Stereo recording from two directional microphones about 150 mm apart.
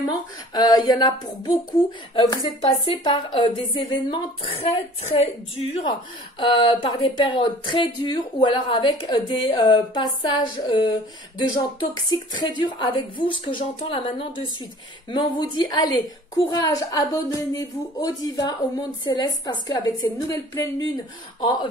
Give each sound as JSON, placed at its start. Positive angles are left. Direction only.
{"t": 0.6, "sound": "a woman's voice", "side_deg": 25}
{"t": 6.4, "sound": "a woman's voice", "side_deg": 35}